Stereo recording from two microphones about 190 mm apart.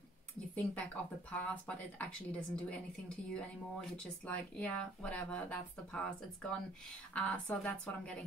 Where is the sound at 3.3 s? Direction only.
5° left (ahead or behind).